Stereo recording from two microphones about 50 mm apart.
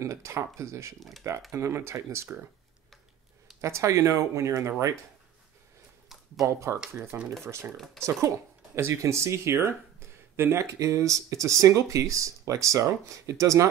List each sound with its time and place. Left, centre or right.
0.0 s speech: right
0.9 s speech: centre
1.5 s speech: right
3.6 s speech: right
6.4 s speech: right
7.1 s speech: right
8.0 s speech: right
10.6 s speech: right